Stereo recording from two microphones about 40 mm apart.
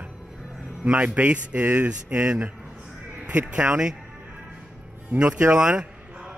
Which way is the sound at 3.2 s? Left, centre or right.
Right.